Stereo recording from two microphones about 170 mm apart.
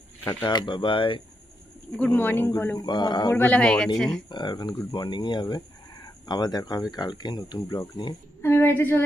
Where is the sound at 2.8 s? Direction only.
25° left (ahead or behind).